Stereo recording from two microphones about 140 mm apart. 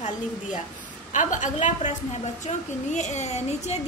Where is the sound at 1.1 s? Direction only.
65° left (ahead or behind).